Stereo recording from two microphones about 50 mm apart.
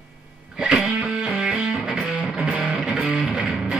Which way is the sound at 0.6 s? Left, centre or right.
Centre.